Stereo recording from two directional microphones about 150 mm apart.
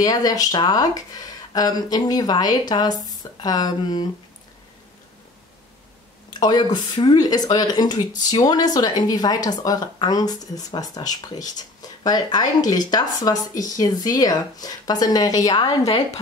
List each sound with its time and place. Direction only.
0.0 s speech: 25° left (ahead or behind)
6.4 s speech: 30° left (ahead or behind)